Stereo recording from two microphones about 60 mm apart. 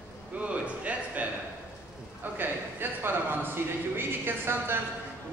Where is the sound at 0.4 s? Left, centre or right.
Right.